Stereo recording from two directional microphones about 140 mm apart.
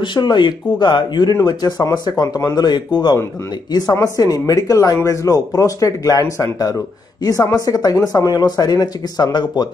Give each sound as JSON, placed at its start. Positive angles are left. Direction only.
{"t": 0.0, "sound": "speech", "side_deg": 30}